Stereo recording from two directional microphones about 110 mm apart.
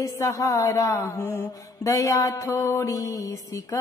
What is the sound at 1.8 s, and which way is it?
Music, 30° left (ahead or behind).